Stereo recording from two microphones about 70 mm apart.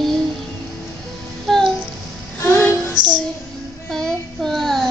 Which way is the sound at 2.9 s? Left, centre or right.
Right.